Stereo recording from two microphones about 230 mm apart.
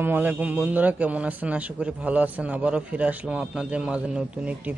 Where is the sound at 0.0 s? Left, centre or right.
Centre.